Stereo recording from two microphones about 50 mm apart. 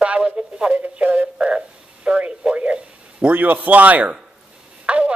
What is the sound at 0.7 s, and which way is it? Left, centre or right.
Speech, right.